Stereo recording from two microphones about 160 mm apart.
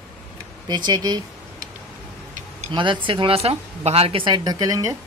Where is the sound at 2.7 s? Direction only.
30° right (ahead or behind).